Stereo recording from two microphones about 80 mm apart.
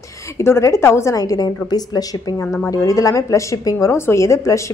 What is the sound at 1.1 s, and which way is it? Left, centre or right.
A woman's voice, left.